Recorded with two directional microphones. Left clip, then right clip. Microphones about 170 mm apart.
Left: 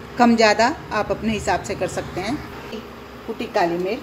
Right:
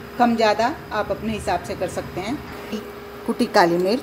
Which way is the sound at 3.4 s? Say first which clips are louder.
Right 4 dB; 40° right (ahead or behind).